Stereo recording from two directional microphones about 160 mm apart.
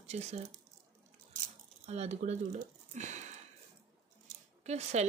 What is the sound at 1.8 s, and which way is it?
Speech, 45° right (ahead or behind).